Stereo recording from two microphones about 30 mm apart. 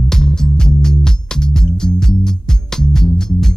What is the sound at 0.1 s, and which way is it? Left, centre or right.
Music, centre.